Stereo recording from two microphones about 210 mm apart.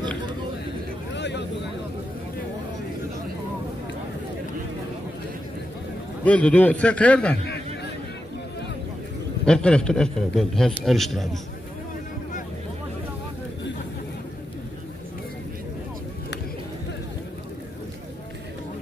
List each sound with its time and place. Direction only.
1.1 s a sound: 55° left (ahead or behind)
6.2 s a man's voice: 5° left (ahead or behind)
9.5 s a man's voice: 5° left (ahead or behind)